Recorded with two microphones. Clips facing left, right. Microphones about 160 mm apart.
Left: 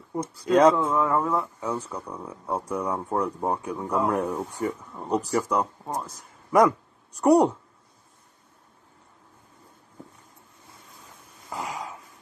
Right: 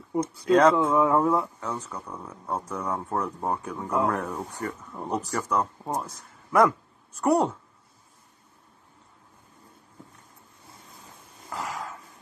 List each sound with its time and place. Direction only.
0.2 s speech: 10° left (ahead or behind)
0.7 s speech: 10° right (ahead or behind)
1.6 s speech: 10° left (ahead or behind)
4.9 s speech: 10° right (ahead or behind)
5.3 s speech: 5° left (ahead or behind)
5.9 s speech: 10° right (ahead or behind)
7.2 s speech: 15° left (ahead or behind)
11.5 s a sound: 15° left (ahead or behind)